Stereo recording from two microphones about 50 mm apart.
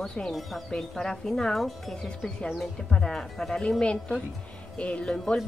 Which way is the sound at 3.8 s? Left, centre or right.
Left.